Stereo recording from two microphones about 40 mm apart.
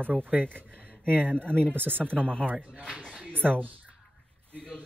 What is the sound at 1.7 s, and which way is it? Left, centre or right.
Speech, right.